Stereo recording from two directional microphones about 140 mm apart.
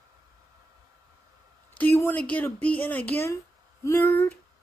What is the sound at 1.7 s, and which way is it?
Speech, 10° left (ahead or behind).